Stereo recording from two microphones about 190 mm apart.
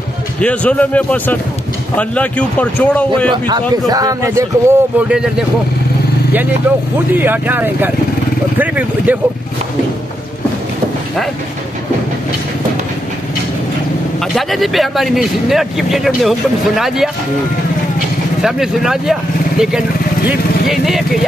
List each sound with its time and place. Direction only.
0.4 s a man's voice: 5° left (ahead or behind)
3.3 s speech: 25° right (ahead or behind); by 5.3 s 5° right (ahead or behind)
7.2 s speech: 10° right (ahead or behind)
14.2 s speech: centre (ahead or behind)
18.4 s speech: 5° right (ahead or behind)
20.2 s speech: centre (ahead or behind)